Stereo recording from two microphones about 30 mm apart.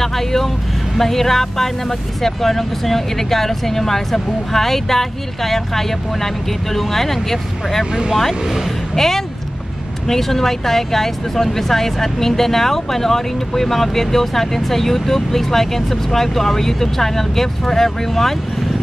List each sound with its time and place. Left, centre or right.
0.0 s speech: centre
8.9 s speech: centre